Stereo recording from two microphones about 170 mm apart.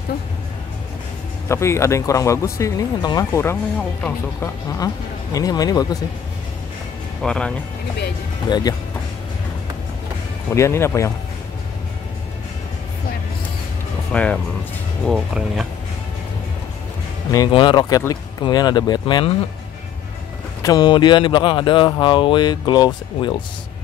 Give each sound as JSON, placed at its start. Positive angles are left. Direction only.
{"t": 1.5, "sound": "speech", "side_deg": 15}
{"t": 4.7, "sound": "speech", "side_deg": 20}
{"t": 7.2, "sound": "speech", "side_deg": 5}
{"t": 8.5, "sound": "speech", "side_deg": 25}
{"t": 10.5, "sound": "speech", "side_deg": 15}
{"t": 14.1, "sound": "speech", "side_deg": 5}
{"t": 17.3, "sound": "speech", "side_deg": 25}
{"t": 20.6, "sound": "speech", "side_deg": 25}